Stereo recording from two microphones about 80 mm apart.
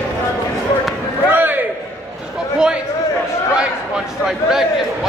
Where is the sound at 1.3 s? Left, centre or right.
Right.